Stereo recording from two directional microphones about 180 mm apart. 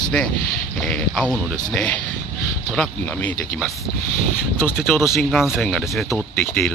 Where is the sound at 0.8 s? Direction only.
5° left (ahead or behind).